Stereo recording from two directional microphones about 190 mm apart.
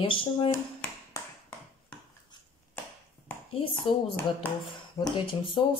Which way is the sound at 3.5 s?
30° left (ahead or behind).